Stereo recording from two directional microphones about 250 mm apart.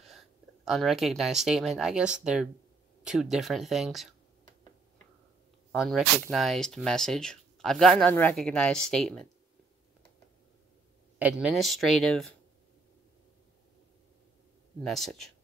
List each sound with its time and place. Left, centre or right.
0.7 s speech: centre
5.7 s speech: centre
11.1 s speech: centre
14.8 s speech: centre